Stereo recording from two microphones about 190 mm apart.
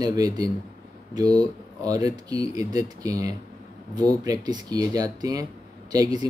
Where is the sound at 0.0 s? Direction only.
20° right (ahead or behind).